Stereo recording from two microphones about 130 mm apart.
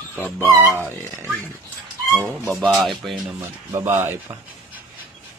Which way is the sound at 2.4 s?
Centre (ahead or behind).